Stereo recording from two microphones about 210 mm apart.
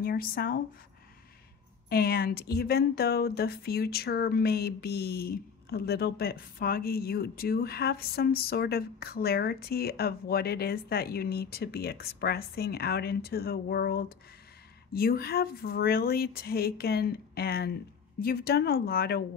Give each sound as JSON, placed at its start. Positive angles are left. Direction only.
{"t": 0.0, "sound": "speech", "side_deg": 45}
{"t": 1.9, "sound": "speech", "side_deg": 45}